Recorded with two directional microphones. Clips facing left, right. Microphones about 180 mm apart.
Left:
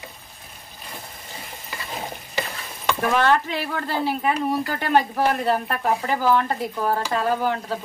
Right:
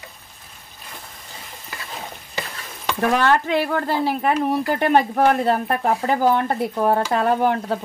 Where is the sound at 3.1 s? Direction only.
45° right (ahead or behind).